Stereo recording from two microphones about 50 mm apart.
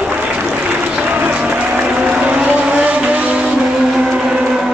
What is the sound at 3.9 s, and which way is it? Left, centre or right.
Vehicle, centre.